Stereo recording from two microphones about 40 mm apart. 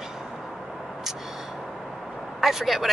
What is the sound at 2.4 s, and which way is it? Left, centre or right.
Speech, centre.